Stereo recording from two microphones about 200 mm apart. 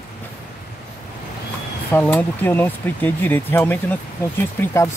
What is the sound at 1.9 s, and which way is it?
Speech, 10° left (ahead or behind).